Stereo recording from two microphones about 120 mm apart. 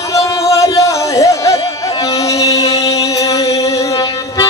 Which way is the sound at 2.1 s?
25° left (ahead or behind).